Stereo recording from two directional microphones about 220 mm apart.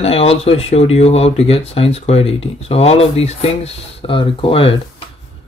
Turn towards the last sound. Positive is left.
turn(degrees=25)  # may be behind; listen again after turning